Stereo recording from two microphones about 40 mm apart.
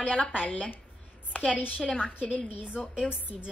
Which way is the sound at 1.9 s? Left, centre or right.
Left.